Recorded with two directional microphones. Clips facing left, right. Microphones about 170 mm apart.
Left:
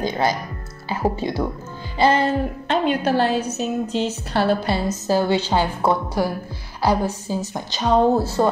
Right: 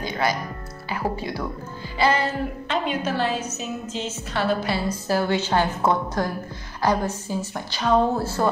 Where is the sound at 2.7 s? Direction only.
65° left (ahead or behind).